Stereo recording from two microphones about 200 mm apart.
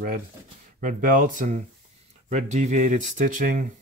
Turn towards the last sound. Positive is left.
turn(degrees=-40)  # may be behind; listen again after turning